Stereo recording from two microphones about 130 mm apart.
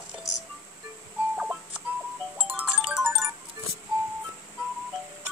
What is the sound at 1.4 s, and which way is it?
Tick-tock, 5° right (ahead or behind).